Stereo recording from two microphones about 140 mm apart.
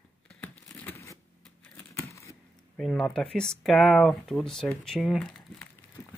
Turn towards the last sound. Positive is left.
turn(degrees=5)  # may be behind; listen again after turning